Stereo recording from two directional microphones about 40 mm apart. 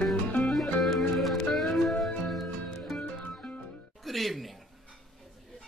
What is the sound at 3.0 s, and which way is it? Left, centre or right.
Music, left.